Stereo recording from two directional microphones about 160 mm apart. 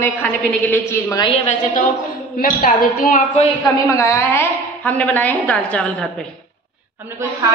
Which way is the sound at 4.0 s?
15° left (ahead or behind).